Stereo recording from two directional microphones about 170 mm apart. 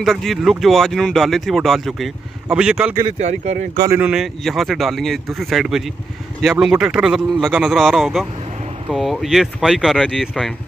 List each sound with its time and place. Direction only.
0.0 s speech: centre (ahead or behind)
3.0 s speech: 45° right (ahead or behind)
3.9 s speech: 5° right (ahead or behind)